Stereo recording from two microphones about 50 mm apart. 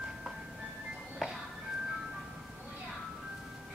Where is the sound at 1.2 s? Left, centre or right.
Centre.